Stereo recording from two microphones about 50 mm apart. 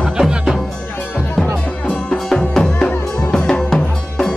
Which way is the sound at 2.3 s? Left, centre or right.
Centre.